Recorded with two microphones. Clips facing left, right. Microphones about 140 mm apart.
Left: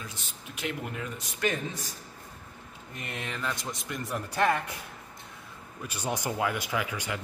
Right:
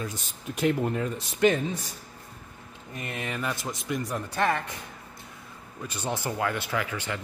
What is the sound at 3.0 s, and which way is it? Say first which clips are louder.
Speech: right 3 dB; 5° right (ahead or behind).